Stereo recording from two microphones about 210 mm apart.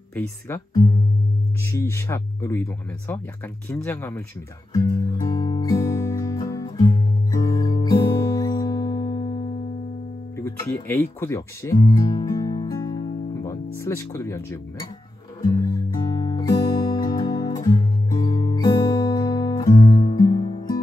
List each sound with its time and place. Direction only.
0.1 s speech: 10° left (ahead or behind)
1.6 s speech: 15° left (ahead or behind)
4.7 s music: 15° left (ahead or behind)
10.3 s music: 10° left (ahead or behind)
13.7 s speech: 15° left (ahead or behind)
15.4 s music: 20° left (ahead or behind)